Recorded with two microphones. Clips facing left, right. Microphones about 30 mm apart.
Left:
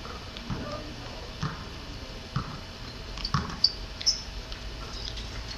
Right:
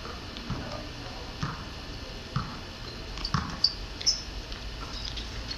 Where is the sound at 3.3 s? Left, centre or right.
Centre.